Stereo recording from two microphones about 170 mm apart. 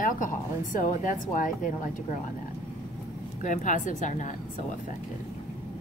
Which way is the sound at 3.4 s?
50° left (ahead or behind).